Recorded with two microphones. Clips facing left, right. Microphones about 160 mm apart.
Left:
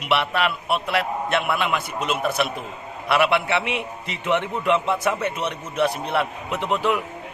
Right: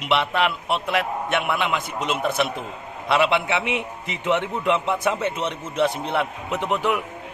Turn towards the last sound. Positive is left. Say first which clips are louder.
# even
turn(degrees=-15)  # may be behind; listen again after turning